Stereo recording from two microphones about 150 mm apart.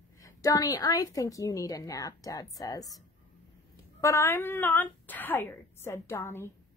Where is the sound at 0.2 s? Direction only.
25° left (ahead or behind).